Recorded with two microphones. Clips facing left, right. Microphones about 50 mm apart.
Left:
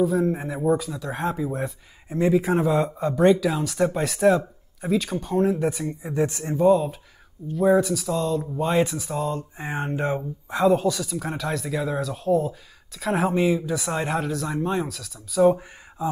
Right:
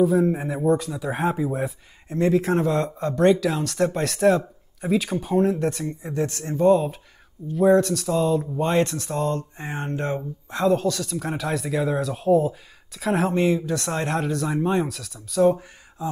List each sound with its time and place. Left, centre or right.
0.0 s speech: centre
6.5 s speech: centre